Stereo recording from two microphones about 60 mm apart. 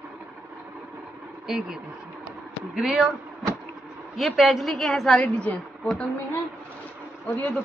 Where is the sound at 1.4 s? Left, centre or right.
Centre.